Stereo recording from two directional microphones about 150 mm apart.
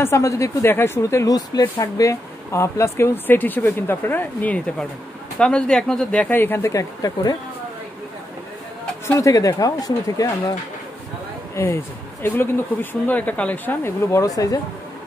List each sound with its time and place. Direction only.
0.0 s speech: 20° left (ahead or behind)
9.0 s speech: 20° left (ahead or behind)
11.5 s speech: 15° left (ahead or behind)